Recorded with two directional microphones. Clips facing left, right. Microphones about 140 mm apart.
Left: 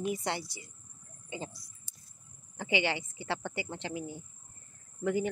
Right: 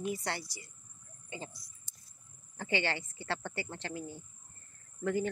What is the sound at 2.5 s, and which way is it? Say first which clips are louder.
Speech: left 3 dB; 15° left (ahead or behind).